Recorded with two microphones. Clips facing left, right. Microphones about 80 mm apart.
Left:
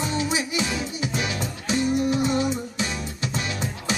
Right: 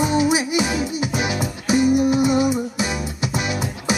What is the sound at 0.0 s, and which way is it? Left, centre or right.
Music, centre.